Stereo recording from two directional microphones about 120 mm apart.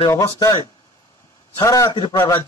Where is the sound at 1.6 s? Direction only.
30° left (ahead or behind).